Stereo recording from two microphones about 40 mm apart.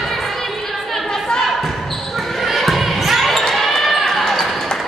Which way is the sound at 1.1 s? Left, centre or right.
Centre.